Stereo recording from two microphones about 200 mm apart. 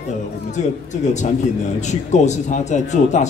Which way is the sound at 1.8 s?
35° left (ahead or behind).